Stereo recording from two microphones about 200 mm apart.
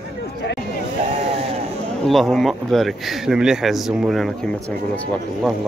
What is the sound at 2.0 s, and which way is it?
A man's voice, centre (ahead or behind).